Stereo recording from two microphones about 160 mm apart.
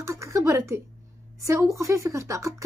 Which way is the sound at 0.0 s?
20° right (ahead or behind).